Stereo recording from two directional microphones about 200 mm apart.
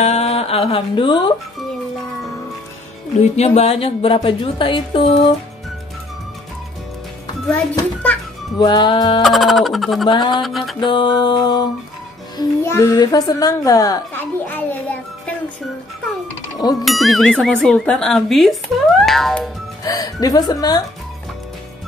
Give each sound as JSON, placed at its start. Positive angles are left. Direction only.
{"t": 0.0, "sound": "speech", "side_deg": 30}
{"t": 3.2, "sound": "music", "side_deg": 30}
{"t": 8.5, "sound": "music", "side_deg": 20}
{"t": 9.2, "sound": "speech", "side_deg": 0}
{"t": 10.0, "sound": "music", "side_deg": 20}
{"t": 10.3, "sound": "speech", "side_deg": 0}
{"t": 10.8, "sound": "music", "side_deg": 25}
{"t": 12.4, "sound": "a child's voice", "side_deg": 15}
{"t": 14.4, "sound": "music", "side_deg": 10}
{"t": 16.8, "sound": "speech", "side_deg": 0}
{"t": 19.8, "sound": "music", "side_deg": 20}